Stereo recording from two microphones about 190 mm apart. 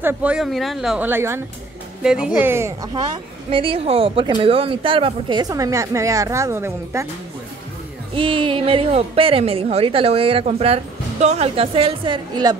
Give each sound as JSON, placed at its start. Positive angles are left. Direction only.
{"t": 0.0, "sound": "a woman's voice", "side_deg": -5}
{"t": 8.1, "sound": "a woman's voice", "side_deg": -25}